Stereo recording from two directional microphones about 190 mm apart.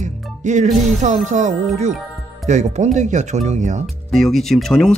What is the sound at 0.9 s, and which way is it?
Speech, 35° right (ahead or behind).